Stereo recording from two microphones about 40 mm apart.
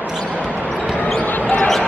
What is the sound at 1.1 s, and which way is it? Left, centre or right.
Basketball bounce, left.